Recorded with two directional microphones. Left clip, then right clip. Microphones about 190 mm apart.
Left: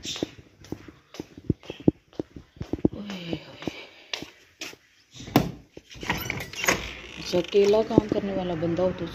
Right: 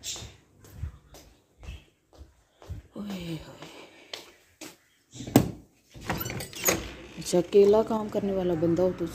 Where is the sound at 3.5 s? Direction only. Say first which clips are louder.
Left 8 dB; 5° right (ahead or behind).